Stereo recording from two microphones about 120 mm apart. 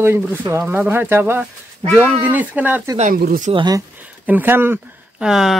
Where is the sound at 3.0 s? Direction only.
90° right.